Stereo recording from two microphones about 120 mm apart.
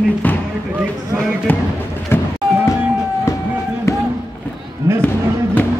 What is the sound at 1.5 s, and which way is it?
Speech, 15° left (ahead or behind).